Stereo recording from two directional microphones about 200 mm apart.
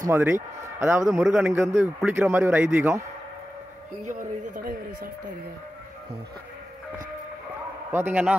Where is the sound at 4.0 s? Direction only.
40° right (ahead or behind).